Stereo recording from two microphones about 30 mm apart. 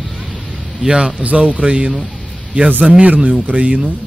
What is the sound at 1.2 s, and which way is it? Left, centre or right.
Speech, right.